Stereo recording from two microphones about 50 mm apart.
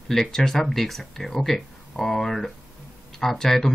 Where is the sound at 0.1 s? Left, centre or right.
Centre.